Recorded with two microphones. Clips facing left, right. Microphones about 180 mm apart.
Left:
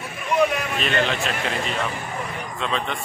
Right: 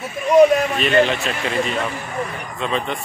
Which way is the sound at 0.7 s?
Centre (ahead or behind).